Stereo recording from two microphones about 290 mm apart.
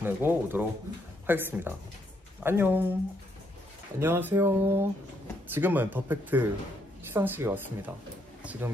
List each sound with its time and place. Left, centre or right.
0.0 s speech: centre
4.0 s speech: centre
8.4 s a sound: centre